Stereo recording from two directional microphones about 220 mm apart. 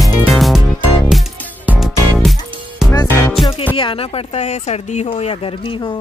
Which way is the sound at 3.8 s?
25° left (ahead or behind).